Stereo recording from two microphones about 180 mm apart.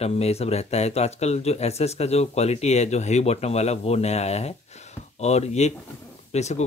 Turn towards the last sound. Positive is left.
turn(degrees=40)  # may be behind; listen again after turning